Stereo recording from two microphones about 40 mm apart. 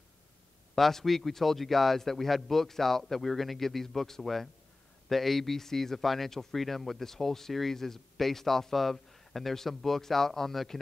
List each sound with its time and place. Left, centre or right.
0.7 s a man's voice: centre